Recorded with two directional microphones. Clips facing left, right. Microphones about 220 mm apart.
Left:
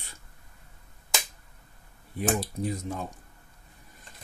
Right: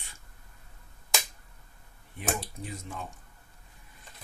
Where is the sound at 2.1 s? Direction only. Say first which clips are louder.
Left 6 dB; 40° left (ahead or behind).